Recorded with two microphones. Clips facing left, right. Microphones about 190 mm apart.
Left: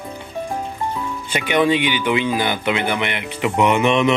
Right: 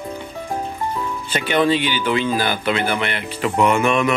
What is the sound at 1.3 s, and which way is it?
Speech, 15° left (ahead or behind).